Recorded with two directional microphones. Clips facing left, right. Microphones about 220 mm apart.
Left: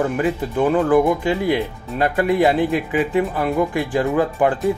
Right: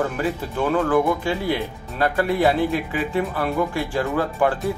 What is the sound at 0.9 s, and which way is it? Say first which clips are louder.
Speech: left 4 dB; 15° left (ahead or behind).